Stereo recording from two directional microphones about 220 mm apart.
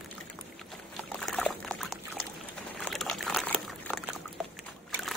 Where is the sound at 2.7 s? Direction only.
5° left (ahead or behind).